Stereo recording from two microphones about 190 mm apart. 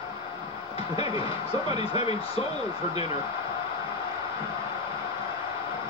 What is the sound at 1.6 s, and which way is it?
Speech, 30° left (ahead or behind).